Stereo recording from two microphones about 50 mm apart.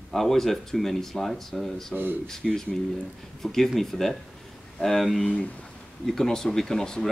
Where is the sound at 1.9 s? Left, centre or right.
Right.